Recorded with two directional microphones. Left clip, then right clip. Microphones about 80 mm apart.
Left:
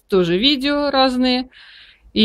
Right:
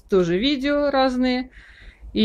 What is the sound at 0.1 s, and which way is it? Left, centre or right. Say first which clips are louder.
Speech: left 4 dB; left.